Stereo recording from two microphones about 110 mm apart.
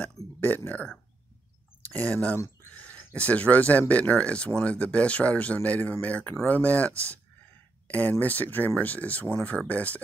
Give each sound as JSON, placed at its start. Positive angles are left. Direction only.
{"t": 0.4, "sound": "speech", "side_deg": 20}
{"t": 1.9, "sound": "speech", "side_deg": 15}